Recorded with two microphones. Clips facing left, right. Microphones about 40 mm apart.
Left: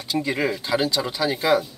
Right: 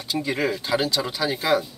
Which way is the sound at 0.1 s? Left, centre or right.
Centre.